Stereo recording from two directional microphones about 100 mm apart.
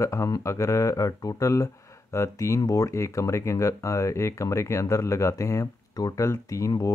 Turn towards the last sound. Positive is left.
turn(degrees=30)  # may be behind; listen again after turning